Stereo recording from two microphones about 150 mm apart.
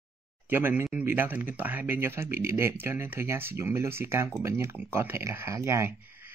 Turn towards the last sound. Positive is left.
turn(degrees=-15)  # may be behind; listen again after turning